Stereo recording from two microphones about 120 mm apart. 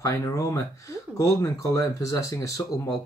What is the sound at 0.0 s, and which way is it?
Speech, 25° left (ahead or behind).